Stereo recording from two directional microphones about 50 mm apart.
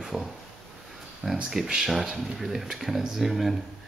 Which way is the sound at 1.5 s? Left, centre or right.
Centre.